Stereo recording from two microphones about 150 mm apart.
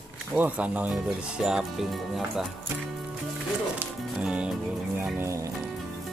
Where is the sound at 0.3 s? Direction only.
10° right (ahead or behind).